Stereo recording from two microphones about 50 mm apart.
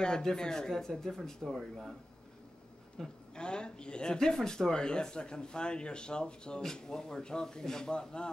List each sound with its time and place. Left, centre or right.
0.0 s speech: centre
1.6 s speech: centre
3.0 s speech: centre